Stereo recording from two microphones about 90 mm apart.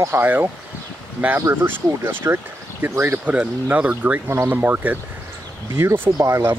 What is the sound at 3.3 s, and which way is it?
Speech, 15° right (ahead or behind).